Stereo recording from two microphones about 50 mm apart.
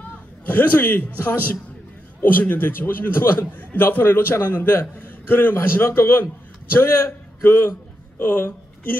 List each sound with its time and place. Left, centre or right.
0.5 s a man's voice: left